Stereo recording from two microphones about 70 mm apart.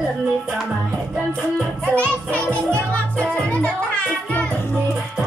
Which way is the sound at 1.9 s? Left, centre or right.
Left.